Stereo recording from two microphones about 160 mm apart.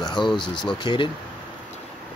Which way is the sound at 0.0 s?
30° left (ahead or behind).